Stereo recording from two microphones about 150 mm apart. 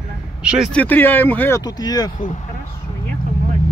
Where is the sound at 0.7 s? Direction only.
10° left (ahead or behind).